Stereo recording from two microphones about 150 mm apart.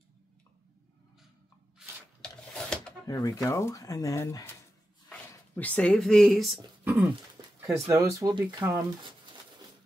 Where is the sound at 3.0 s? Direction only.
25° left (ahead or behind); by 6.6 s centre (ahead or behind).